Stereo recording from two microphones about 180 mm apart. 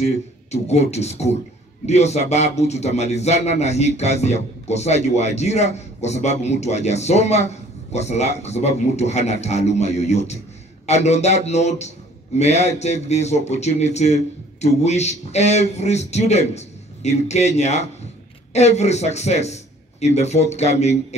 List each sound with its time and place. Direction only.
0.0 s a man's voice: 40° left (ahead or behind)